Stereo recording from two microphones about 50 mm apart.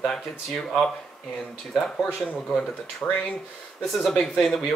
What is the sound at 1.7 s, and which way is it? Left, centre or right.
Speech, centre.